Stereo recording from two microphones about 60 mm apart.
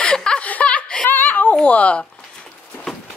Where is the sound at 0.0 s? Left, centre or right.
Centre.